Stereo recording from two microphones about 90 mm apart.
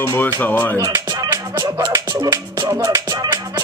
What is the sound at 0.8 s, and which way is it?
Music, 50° right (ahead or behind).